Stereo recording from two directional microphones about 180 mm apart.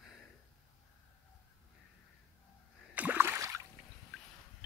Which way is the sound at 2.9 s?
10° right (ahead or behind).